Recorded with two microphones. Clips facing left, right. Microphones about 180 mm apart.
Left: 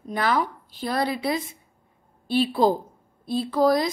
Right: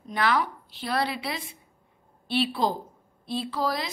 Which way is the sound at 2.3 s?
45° left (ahead or behind).